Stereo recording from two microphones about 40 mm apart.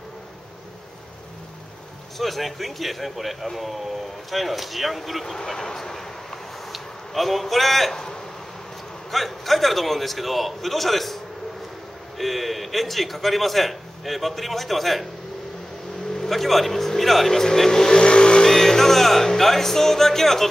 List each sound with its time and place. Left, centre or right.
2.1 s a man's voice: centre
5.2 s a man's voice: centre
7.9 s a sound: centre
9.1 s a man's voice: centre
12.2 s a man's voice: centre
16.2 s speech: centre
17.9 s vehicle: left
18.4 s speech: centre